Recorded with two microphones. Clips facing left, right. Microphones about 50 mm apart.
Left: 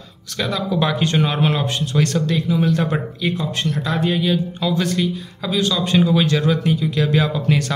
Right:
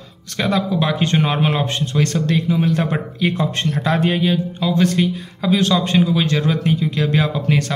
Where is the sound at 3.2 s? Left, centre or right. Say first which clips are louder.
Right 3 dB; right.